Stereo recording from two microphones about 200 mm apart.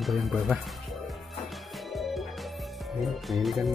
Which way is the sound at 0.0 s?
Centre (ahead or behind).